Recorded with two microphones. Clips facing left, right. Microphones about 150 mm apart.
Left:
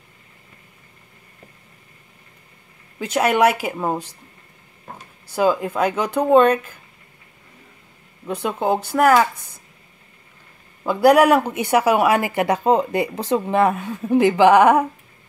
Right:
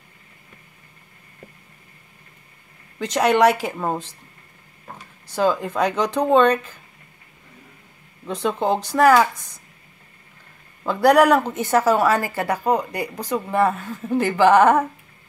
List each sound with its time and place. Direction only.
3.0 s speech: 5° left (ahead or behind)
5.3 s speech: 10° left (ahead or behind)
8.3 s speech: 5° left (ahead or behind)
10.8 s speech: 10° left (ahead or behind)